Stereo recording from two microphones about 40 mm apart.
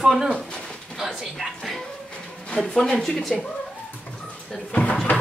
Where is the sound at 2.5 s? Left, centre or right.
Centre.